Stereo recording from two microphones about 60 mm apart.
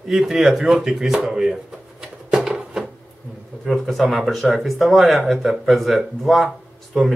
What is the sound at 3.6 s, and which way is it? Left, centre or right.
Speech, centre.